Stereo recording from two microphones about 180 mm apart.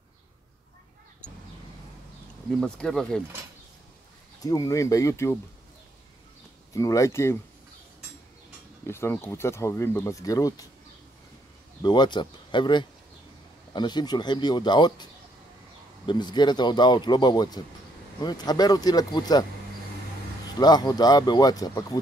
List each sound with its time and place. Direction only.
2.6 s speech: 5° left (ahead or behind)
4.4 s speech: 20° left (ahead or behind)
6.7 s speech: 20° left (ahead or behind)
8.8 s speech: 15° left (ahead or behind)
11.8 s speech: 25° left (ahead or behind)
16.1 s speech: 25° left (ahead or behind)
20.5 s speech: 20° left (ahead or behind)